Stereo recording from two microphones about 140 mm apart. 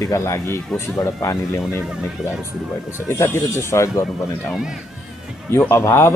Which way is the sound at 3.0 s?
15° left (ahead or behind).